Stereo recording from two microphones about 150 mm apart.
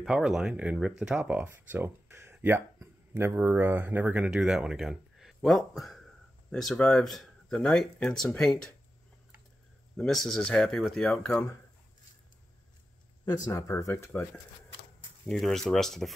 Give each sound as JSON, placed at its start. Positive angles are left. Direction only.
{"t": 0.0, "sound": "speech", "side_deg": -5}
{"t": 9.9, "sound": "speech", "side_deg": 5}
{"t": 13.2, "sound": "speech", "side_deg": 25}
{"t": 15.2, "sound": "speech", "side_deg": 0}